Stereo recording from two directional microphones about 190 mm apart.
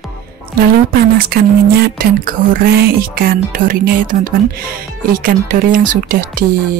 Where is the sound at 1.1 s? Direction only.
50° right (ahead or behind).